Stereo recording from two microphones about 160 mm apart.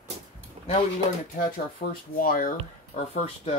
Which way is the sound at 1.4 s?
60° left (ahead or behind).